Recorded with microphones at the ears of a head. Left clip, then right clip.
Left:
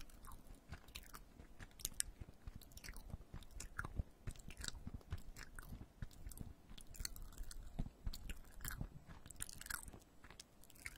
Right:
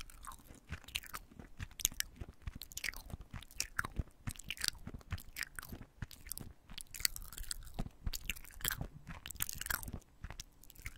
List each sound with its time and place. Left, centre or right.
0.0 s chewing: right
8.0 s biting: right